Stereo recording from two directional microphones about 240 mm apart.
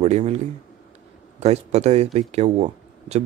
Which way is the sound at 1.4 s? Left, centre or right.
Right.